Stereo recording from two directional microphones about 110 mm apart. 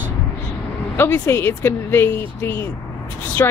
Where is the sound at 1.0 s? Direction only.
25° left (ahead or behind).